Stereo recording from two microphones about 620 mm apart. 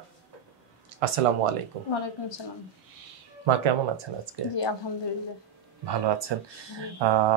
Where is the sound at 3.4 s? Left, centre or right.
Right.